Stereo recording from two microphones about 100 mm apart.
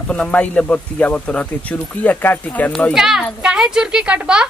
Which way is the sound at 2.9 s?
5° right (ahead or behind).